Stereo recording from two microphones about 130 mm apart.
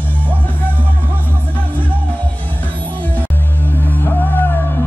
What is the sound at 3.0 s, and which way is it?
Music, 10° left (ahead or behind).